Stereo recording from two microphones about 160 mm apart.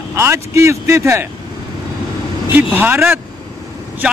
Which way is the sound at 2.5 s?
10° right (ahead or behind).